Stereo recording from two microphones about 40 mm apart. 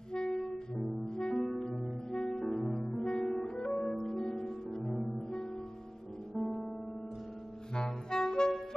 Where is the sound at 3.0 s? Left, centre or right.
Centre.